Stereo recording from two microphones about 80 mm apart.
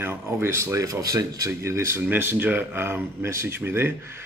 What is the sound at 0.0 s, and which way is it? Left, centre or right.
Speech, right.